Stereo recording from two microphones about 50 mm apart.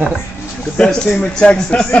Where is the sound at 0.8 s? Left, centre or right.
Centre.